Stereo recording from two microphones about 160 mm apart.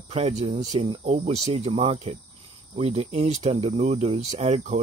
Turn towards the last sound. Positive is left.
turn(degrees=-45)  # may be behind; listen again after turning